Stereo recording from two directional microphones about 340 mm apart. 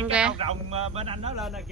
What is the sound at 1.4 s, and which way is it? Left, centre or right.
Speech, centre.